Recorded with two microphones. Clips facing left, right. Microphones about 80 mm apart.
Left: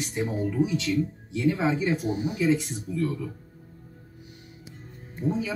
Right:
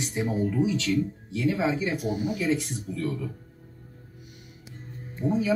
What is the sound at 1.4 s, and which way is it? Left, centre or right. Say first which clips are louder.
Speech: left 1 dB; left.